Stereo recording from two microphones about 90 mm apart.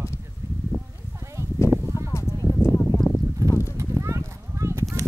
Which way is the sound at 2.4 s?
30° left (ahead or behind).